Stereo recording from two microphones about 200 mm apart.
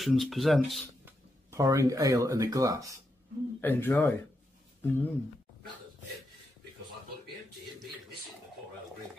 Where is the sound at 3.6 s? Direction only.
10° left (ahead or behind).